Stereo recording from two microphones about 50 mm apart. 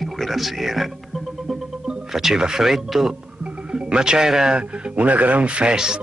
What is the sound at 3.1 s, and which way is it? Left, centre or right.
Music, centre.